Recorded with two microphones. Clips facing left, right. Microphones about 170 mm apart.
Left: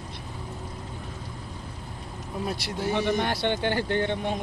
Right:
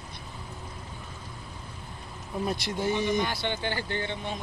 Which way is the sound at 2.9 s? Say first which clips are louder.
Left 2 dB; 65° left (ahead or behind).